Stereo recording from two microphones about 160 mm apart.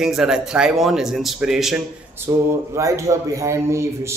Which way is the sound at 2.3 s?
20° right (ahead or behind).